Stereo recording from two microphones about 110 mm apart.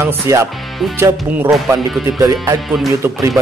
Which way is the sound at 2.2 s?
25° right (ahead or behind).